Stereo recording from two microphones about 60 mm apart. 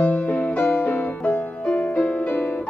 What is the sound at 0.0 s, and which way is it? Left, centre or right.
Music, left.